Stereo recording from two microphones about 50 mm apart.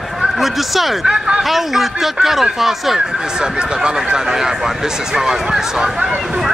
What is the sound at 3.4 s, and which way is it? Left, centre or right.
Speech, centre.